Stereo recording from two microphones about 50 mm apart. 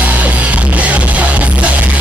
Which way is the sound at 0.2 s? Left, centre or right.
Right.